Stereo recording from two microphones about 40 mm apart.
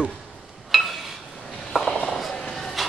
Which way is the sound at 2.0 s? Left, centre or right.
Centre.